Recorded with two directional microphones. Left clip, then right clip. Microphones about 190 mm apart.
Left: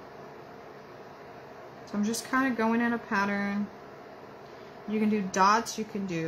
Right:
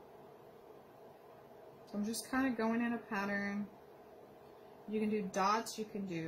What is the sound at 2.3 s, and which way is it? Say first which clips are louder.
Speech: left 9 dB; 5° left (ahead or behind).